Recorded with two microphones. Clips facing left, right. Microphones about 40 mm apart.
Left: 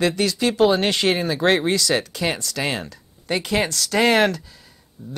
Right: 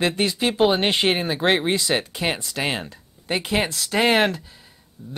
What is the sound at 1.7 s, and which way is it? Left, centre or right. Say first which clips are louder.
Speech: left 1 dB; right.